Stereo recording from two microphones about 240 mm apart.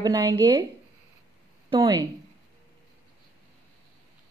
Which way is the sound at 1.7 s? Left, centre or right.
Centre.